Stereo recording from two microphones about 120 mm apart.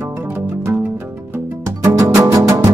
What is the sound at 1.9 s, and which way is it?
Music, 25° right (ahead or behind).